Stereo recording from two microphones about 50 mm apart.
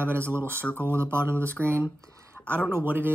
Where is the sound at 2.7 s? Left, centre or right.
Right.